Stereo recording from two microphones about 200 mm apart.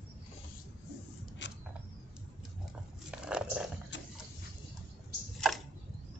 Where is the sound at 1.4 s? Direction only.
65° left (ahead or behind).